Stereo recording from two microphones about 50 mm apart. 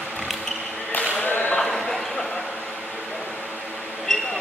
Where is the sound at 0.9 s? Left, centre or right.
Left.